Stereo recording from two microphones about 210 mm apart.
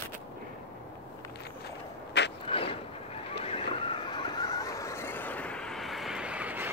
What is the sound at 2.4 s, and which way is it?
Vehicle, 25° left (ahead or behind).